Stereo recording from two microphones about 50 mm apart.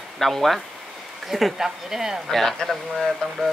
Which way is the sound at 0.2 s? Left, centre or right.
Centre.